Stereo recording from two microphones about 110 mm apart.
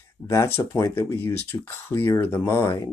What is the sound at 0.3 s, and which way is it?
Speech, 25° left (ahead or behind).